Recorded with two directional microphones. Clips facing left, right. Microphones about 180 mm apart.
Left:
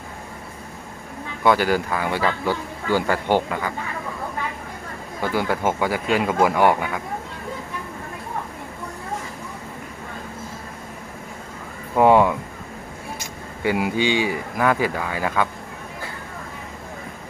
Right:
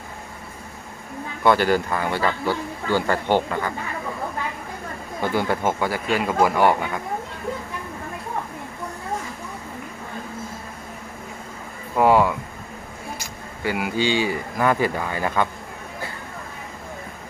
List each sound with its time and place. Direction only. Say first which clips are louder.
1.4 s speech: even; 10° left (ahead or behind)
5.2 s speech: even; 5° left (ahead or behind)
12.0 s speech: left 2 dB; 20° left (ahead or behind)
13.7 s speech: left 2 dB; 20° left (ahead or behind)
14.6 s speech: even; 5° left (ahead or behind)